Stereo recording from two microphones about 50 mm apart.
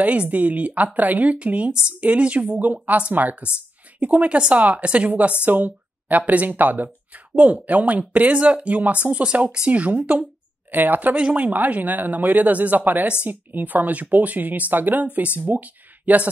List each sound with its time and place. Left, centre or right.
0.0 s speech: right
5.4 s speech: right; by 9.7 s centre
9.7 s speech: right